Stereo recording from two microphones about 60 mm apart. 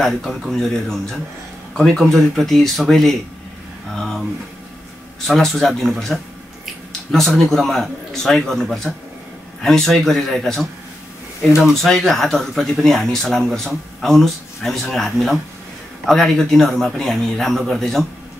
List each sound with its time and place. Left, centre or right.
0.0 s speech: centre
5.2 s speech: centre